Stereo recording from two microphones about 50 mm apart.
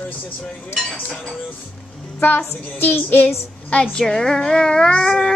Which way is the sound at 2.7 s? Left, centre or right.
Left.